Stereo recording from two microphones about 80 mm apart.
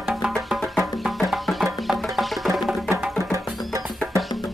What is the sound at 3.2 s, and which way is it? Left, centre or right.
Music, right.